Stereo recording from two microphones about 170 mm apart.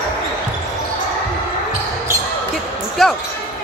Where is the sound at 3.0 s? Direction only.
Centre (ahead or behind).